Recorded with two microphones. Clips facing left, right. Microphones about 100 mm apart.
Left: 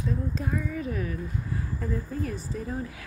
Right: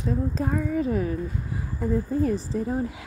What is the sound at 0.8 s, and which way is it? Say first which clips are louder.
A woman's voice: right 7 dB; 30° right (ahead or behind).